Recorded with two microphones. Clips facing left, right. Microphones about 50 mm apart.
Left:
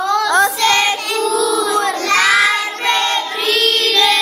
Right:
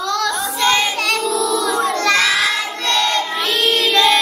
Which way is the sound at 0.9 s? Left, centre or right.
Right.